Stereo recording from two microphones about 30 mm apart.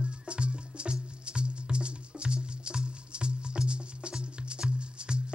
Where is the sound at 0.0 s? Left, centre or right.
Right.